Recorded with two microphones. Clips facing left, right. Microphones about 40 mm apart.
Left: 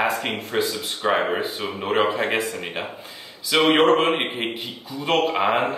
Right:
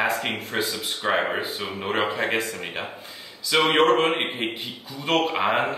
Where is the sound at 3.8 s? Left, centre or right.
Centre.